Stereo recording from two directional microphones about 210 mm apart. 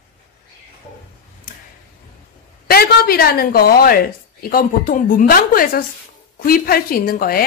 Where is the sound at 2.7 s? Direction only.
45° left (ahead or behind).